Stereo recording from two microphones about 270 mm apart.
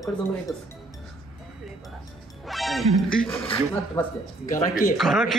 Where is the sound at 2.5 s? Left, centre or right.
Centre.